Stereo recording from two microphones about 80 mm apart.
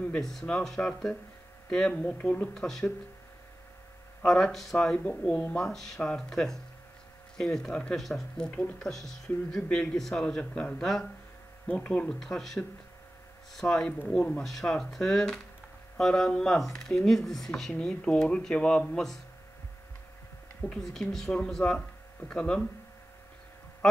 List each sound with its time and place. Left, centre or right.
0.0 s speech: centre
2.5 s speech: centre
4.2 s speech: centre
12.2 s speech: centre
20.8 s speech: centre